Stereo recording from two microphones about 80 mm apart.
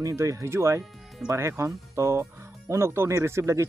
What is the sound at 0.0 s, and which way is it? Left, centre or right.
Speech, right.